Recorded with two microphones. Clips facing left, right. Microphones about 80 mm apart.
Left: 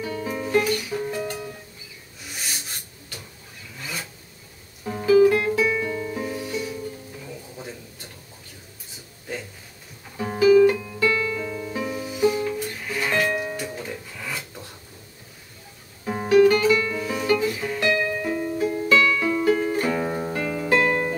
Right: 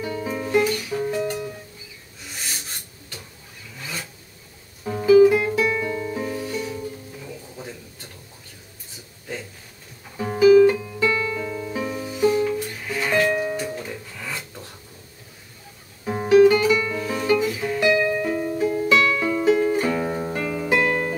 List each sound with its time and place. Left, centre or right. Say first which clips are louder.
0.0 s music: right 1 dB; centre
2.2 s rub: even; centre
3.8 s vehicle: even; centre
4.8 s music: right 3 dB; centre
10.1 s music: right 2 dB; centre
11.0 s music: even; centre
11.3 s music: right 1 dB; centre
13.7 s filing: right 1 dB; centre
16.3 s guitar: right 2 dB; centre
16.9 s music: right 1 dB; centre